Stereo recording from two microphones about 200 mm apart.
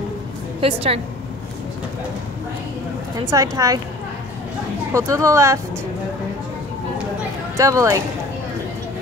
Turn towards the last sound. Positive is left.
turn(degrees=-15)  # may be behind; listen again after turning